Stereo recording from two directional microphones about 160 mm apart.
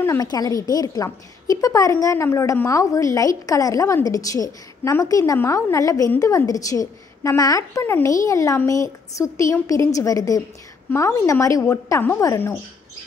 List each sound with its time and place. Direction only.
0.0 s a woman's voice: 20° left (ahead or behind)